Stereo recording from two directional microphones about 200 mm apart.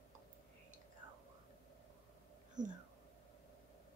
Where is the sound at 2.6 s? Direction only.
40° right (ahead or behind).